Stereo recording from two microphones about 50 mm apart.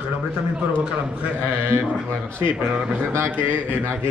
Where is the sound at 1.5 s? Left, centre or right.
Right.